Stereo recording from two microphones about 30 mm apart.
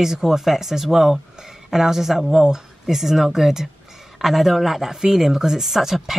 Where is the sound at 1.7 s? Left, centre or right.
Centre.